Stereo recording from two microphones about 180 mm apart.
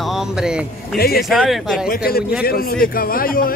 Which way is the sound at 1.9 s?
55° left (ahead or behind).